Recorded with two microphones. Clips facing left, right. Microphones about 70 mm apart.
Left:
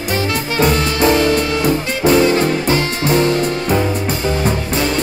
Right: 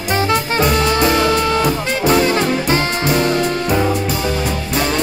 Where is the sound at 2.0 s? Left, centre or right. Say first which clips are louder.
Left 2 dB; right.